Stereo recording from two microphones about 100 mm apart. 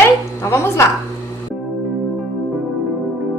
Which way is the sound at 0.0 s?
25° left (ahead or behind).